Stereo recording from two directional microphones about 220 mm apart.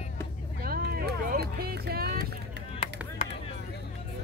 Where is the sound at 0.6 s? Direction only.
45° right (ahead or behind).